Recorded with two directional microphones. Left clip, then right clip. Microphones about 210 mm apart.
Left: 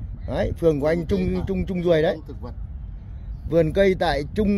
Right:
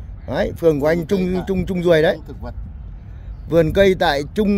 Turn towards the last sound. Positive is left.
turn(degrees=-10)  # may be behind; listen again after turning